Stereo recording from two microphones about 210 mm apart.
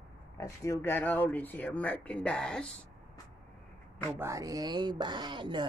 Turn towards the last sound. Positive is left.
turn(degrees=-20)  # may be behind; listen again after turning